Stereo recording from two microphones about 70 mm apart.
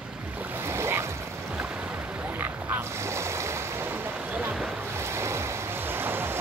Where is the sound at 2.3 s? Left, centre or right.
Right.